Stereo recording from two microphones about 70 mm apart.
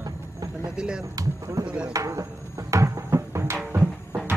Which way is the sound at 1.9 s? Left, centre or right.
Right.